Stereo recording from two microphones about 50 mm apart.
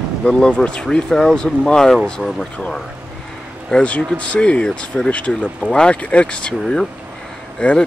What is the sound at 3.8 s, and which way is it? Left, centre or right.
Speech, left.